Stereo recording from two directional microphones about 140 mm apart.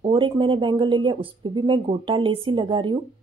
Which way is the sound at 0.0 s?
35° right (ahead or behind).